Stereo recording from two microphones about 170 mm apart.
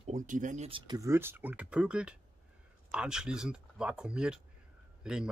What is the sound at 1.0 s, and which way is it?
A man's voice, 15° right (ahead or behind).